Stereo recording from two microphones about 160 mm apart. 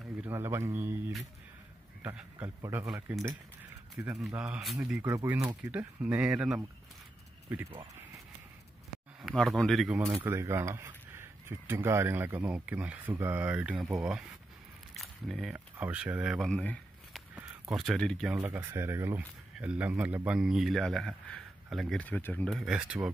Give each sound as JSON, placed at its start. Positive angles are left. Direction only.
{"t": 0.3, "sound": "speech", "side_deg": -15}
{"t": 2.1, "sound": "speech", "side_deg": -10}
{"t": 5.0, "sound": "speech", "side_deg": -15}
{"t": 9.2, "sound": "speech", "side_deg": 0}
{"t": 10.2, "sound": "speech", "side_deg": -15}
{"t": 15.0, "sound": "a sound", "side_deg": 0}
{"t": 15.5, "sound": "speech", "side_deg": -10}
{"t": 18.3, "sound": "speech", "side_deg": -10}